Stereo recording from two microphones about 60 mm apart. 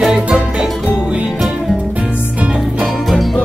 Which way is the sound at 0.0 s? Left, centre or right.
Centre.